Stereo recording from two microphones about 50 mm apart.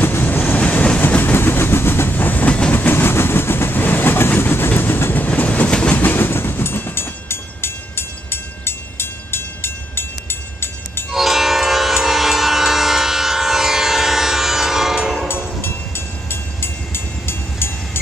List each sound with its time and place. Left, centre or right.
0.0 s train: left
0.6 s train: left
1.0 s train: left
2.7 s train: left
5.7 s train: centre
5.9 s train: left
11.1 s train: centre
15.2 s train: left
16.3 s vehicle: left